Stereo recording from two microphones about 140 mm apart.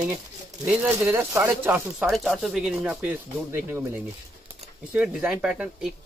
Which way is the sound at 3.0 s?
15° right (ahead or behind).